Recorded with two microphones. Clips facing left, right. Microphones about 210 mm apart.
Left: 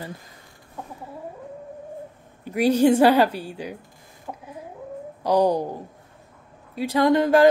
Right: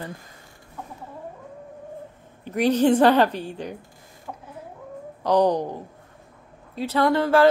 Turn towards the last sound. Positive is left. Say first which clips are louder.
# left 2 dB
turn(degrees=15)  # may be behind; listen again after turning